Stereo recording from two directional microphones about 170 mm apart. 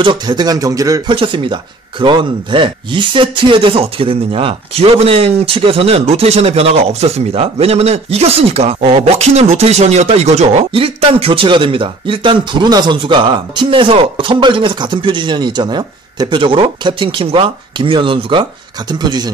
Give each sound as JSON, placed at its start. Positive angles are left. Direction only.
{"t": 0.0, "sound": "speech", "side_deg": -25}